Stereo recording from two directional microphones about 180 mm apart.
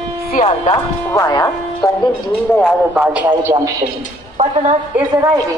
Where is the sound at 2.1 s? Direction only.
Centre (ahead or behind); by 3.8 s 15° right (ahead or behind).